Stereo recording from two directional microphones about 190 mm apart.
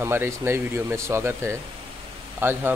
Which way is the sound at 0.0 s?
10° right (ahead or behind).